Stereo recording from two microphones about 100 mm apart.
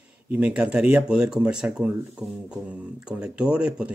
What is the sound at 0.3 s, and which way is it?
Speech, 10° right (ahead or behind).